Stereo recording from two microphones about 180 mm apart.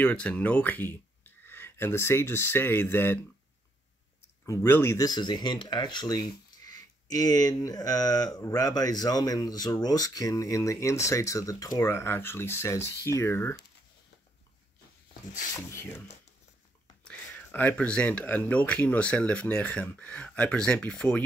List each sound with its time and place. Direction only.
0.0 s speech: 5° left (ahead or behind)
4.5 s speech: 15° left (ahead or behind)
15.7 s speech: 15° left (ahead or behind)